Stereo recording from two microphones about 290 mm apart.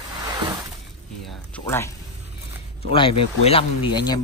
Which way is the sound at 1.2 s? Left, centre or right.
Centre.